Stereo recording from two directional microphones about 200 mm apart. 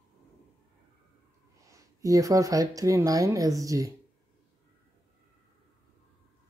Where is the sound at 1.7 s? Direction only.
15° right (ahead or behind).